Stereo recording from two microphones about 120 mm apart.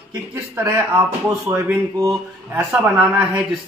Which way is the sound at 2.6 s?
15° right (ahead or behind).